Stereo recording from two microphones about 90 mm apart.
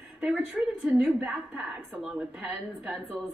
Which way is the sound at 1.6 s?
20° right (ahead or behind).